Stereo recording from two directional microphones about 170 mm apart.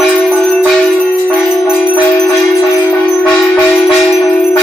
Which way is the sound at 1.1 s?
5° left (ahead or behind).